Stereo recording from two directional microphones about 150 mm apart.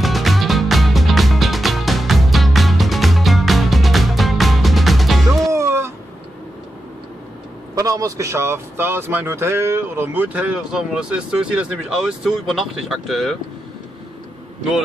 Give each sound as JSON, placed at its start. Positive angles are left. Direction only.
{"t": 0.0, "sound": "music", "side_deg": 0}
{"t": 5.5, "sound": "a sound", "side_deg": -20}
{"t": 7.7, "sound": "a man's voice", "side_deg": -20}